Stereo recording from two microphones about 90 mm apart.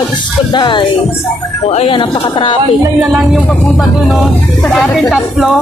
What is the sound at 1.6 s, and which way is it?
Speech, 80° left.